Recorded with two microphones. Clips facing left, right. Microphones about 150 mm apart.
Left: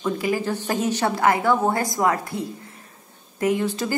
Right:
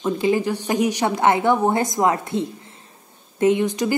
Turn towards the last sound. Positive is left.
turn(degrees=-15)  # may be behind; listen again after turning